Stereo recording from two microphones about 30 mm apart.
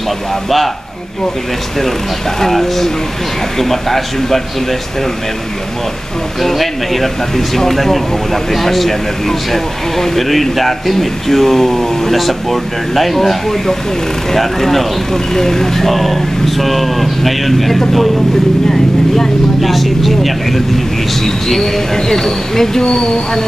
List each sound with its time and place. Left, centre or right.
2.4 s speech: centre
6.4 s speech: centre
22.8 s speech: left